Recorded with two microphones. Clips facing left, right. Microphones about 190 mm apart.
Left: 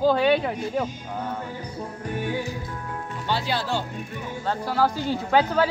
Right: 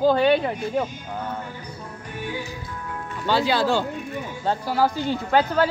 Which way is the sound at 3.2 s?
90° right.